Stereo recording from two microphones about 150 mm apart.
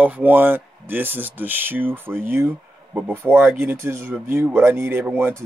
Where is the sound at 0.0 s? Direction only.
10° right (ahead or behind).